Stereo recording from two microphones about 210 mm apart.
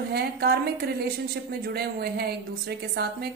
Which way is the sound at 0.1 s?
50° right (ahead or behind).